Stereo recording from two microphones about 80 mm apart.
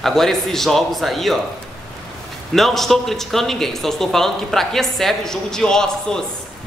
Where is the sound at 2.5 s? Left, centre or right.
Centre.